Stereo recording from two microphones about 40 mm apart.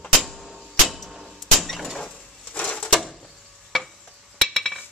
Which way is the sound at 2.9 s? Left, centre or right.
Centre.